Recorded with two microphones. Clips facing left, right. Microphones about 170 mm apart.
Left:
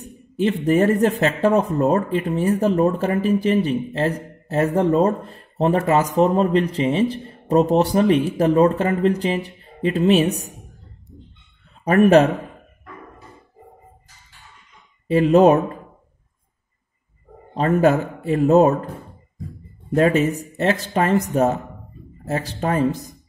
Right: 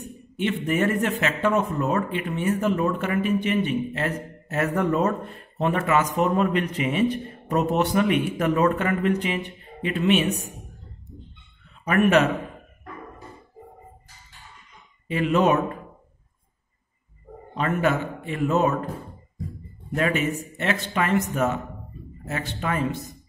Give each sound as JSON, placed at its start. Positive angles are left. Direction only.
{"t": 0.4, "sound": "speech", "side_deg": 35}
{"t": 11.8, "sound": "speech", "side_deg": 35}
{"t": 15.0, "sound": "speech", "side_deg": 35}
{"t": 17.6, "sound": "speech", "side_deg": 35}
{"t": 19.9, "sound": "speech", "side_deg": 35}